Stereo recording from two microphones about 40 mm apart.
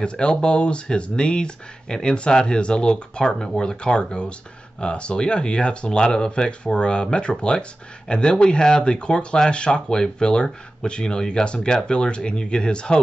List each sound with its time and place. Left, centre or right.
0.0 s speech: left